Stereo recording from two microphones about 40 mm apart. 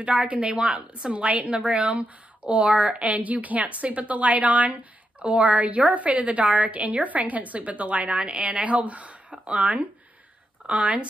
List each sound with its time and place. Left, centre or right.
0.0 s a woman's voice: right
8.6 s a woman's voice: right